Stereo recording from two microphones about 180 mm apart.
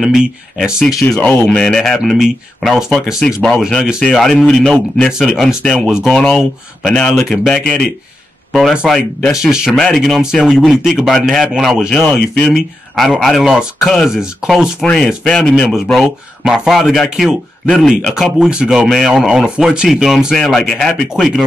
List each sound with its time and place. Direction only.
0.0 s speech: centre (ahead or behind)